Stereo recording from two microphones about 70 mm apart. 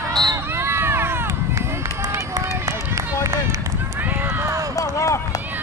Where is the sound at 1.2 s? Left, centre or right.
Right.